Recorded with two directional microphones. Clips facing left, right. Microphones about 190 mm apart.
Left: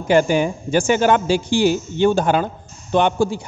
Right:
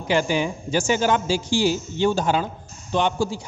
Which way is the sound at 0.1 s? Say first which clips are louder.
Left 6 dB; 50° left (ahead or behind).